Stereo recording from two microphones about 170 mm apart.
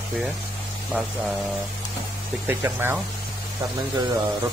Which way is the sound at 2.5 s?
15° right (ahead or behind).